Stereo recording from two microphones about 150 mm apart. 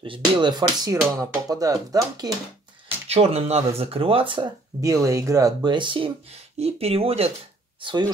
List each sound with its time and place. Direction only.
0.0 s speech: 35° right (ahead or behind)
3.1 s speech: 40° right (ahead or behind)
4.8 s speech: 20° right (ahead or behind); by 7.3 s 40° right (ahead or behind)
7.8 s speech: 30° right (ahead or behind)